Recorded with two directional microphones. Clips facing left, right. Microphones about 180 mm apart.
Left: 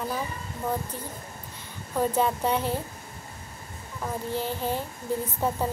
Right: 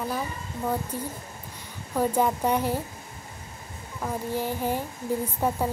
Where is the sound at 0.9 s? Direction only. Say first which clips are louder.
Right 4 dB; 10° right (ahead or behind).